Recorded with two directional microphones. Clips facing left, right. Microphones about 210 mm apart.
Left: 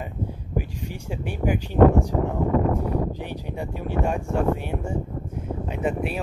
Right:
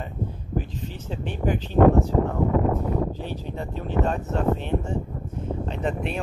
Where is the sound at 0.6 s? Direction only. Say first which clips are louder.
Even; 10° left (ahead or behind).